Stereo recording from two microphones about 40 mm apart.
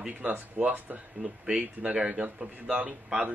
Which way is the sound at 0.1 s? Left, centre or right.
Right.